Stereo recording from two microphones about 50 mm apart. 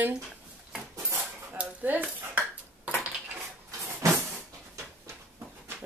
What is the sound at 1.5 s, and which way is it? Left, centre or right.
Dishes, right.